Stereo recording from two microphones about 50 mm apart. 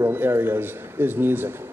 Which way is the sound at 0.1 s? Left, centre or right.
Right.